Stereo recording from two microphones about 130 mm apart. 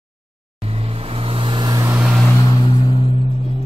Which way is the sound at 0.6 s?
50° right (ahead or behind).